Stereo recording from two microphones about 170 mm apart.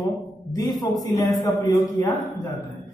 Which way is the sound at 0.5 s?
20° left (ahead or behind).